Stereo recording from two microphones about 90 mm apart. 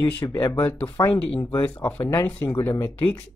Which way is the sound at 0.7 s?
25° left (ahead or behind).